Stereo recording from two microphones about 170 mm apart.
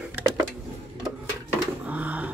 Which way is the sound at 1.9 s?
10° right (ahead or behind).